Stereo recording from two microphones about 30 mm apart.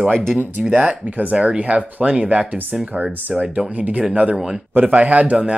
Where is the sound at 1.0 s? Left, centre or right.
Right.